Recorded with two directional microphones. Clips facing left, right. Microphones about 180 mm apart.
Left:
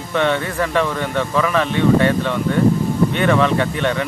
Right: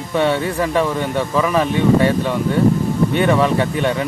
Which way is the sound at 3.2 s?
10° right (ahead or behind).